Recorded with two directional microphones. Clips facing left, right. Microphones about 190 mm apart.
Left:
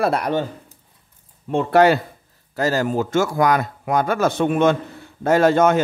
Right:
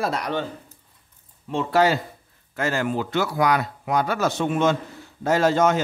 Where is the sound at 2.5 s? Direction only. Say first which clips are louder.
Left 4 dB; 40° left (ahead or behind); by 5.8 s 55° left (ahead or behind).